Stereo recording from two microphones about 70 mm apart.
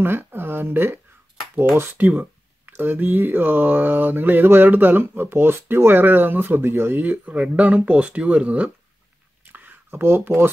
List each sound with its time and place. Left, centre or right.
0.0 s speech: right
2.0 s speech: right
7.1 s speech: centre
9.4 s a sound: right